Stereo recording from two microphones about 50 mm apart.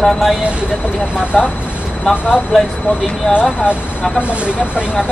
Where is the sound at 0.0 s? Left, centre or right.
Centre.